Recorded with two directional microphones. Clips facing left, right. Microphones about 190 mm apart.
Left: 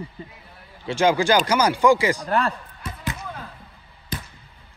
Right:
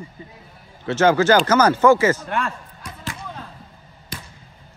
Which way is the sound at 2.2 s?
35° left (ahead or behind).